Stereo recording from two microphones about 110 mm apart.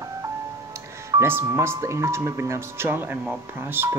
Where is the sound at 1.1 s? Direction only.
20° right (ahead or behind).